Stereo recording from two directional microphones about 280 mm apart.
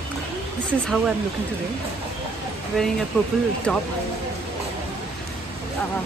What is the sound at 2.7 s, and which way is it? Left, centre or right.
A woman's voice, centre.